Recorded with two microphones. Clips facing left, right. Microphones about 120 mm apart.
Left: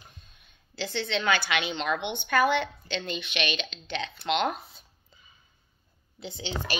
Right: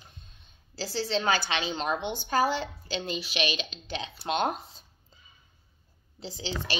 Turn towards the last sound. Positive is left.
turn(degrees=-35)  # may be behind; listen again after turning